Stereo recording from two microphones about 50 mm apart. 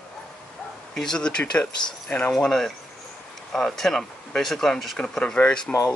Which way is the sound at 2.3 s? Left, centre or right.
Centre.